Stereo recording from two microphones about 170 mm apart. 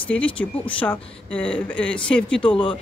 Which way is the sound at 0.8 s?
5° left (ahead or behind).